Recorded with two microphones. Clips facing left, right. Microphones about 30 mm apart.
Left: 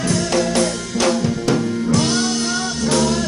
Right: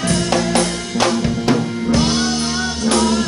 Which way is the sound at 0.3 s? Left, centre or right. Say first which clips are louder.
Even; right.